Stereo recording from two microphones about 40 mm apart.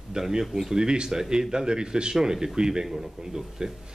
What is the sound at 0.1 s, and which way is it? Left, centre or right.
Speech, centre.